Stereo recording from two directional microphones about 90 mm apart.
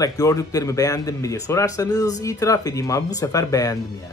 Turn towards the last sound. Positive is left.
turn(degrees=40)  # may be behind; listen again after turning